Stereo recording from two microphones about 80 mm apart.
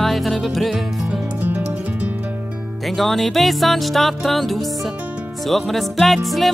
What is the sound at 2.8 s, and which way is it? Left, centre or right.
Music, centre.